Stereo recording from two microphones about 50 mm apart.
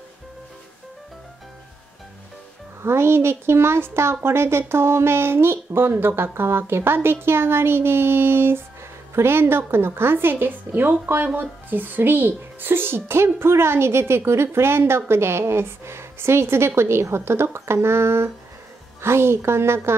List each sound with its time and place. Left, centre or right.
2.8 s speech: right